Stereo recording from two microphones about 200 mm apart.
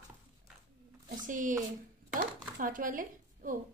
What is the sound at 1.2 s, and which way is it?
A woman's voice, 40° right (ahead or behind).